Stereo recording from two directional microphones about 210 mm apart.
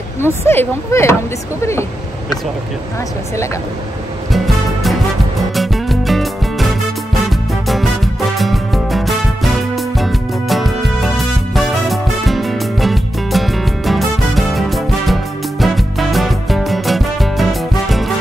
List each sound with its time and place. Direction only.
0.2 s speech: 10° left (ahead or behind)
4.3 s music: centre (ahead or behind)